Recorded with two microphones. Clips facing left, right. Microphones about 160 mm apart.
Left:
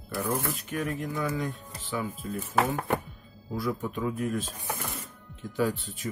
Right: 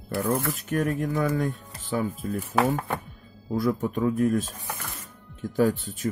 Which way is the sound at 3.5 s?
45° right (ahead or behind).